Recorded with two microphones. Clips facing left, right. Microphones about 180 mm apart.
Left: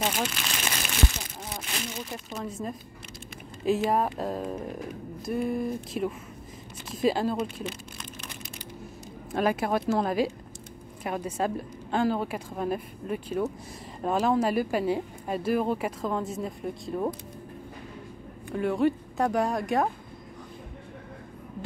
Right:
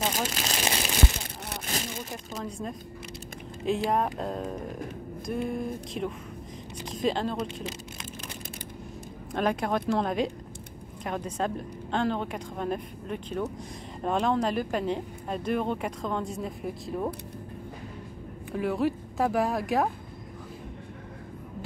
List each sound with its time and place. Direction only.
0.1 s speech: 40° right (ahead or behind)
2.3 s speech: 5° left (ahead or behind)
9.3 s speech: 5° left (ahead or behind)
18.5 s speech: centre (ahead or behind)